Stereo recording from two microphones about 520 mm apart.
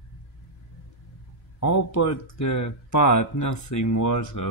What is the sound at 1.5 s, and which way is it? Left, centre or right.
Speech, left.